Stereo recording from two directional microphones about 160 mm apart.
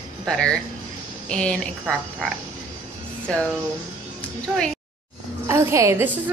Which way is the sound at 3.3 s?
5° left (ahead or behind).